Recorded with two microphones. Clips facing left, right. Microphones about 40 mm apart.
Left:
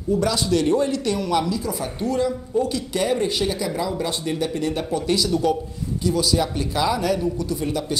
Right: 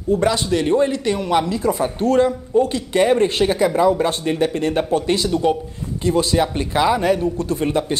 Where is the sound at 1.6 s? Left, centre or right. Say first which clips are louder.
Right 7 dB; right.